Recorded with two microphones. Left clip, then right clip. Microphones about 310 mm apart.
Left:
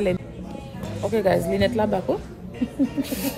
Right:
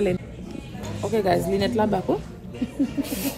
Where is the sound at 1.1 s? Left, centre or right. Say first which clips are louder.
Left 1 dB; centre.